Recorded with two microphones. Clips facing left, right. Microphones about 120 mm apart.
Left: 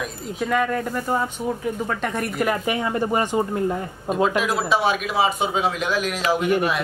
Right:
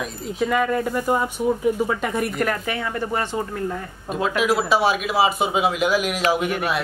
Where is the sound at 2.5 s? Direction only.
15° left (ahead or behind).